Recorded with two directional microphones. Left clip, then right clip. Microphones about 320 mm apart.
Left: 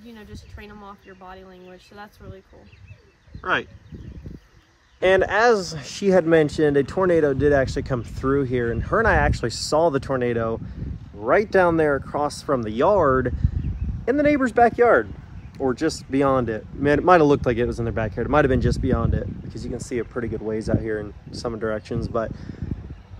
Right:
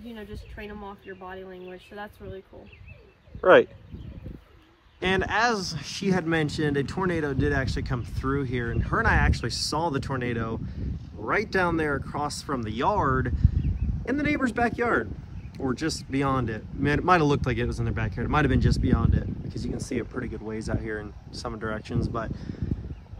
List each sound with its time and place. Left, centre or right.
0.1 s speech: left
5.0 s speech: centre